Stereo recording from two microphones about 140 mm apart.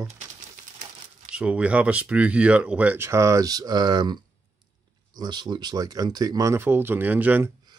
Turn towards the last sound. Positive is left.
turn(degrees=-10)  # may be behind; listen again after turning